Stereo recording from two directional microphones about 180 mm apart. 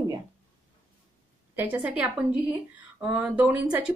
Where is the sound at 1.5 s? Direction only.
10° right (ahead or behind).